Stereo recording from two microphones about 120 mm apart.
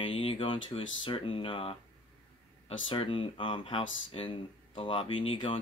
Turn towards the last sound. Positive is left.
turn(degrees=45)  # may be behind; listen again after turning